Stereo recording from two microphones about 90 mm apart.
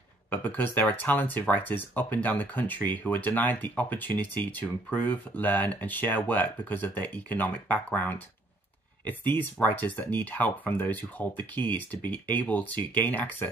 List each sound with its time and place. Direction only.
0.3 s speech: 15° left (ahead or behind)